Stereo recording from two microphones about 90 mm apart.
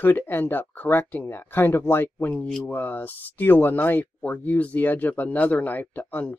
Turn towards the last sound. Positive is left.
turn(degrees=20)  # may be behind; listen again after turning